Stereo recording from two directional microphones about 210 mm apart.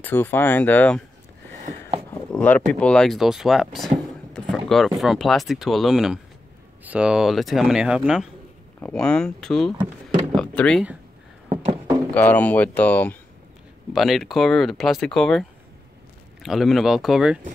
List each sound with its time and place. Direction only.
0.0 s speech: 10° left (ahead or behind)
2.3 s speech: 5° left (ahead or behind)
11.4 s a sound: 30° right (ahead or behind)
12.1 s speech: 10° left (ahead or behind)
16.4 s speech: centre (ahead or behind)